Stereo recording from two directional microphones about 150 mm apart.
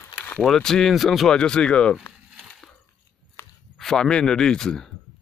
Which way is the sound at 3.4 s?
15° left (ahead or behind).